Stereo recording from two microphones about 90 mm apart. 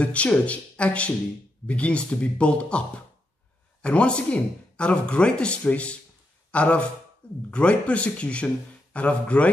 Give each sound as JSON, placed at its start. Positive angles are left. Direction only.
{"t": 0.0, "sound": "speech", "side_deg": 15}
{"t": 3.8, "sound": "speech", "side_deg": 10}